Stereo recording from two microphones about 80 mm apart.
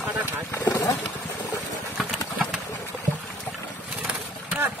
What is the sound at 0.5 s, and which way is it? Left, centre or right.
Speech, left.